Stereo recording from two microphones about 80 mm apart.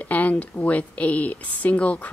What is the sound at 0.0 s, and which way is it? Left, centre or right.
Speech, left.